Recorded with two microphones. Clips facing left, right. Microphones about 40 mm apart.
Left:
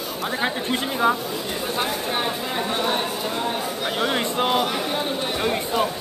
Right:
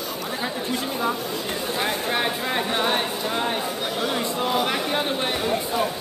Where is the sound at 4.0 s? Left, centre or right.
Left.